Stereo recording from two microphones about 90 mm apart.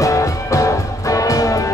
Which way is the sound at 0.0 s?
35° left (ahead or behind).